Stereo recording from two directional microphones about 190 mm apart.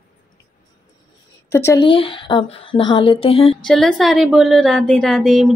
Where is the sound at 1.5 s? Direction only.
15° left (ahead or behind).